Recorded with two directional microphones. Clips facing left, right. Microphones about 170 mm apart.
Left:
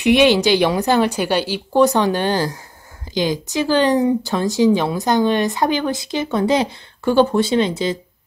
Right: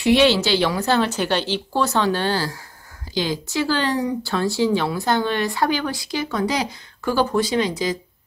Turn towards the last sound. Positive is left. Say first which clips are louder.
# left 4 dB
turn(degrees=25)  # may be behind; listen again after turning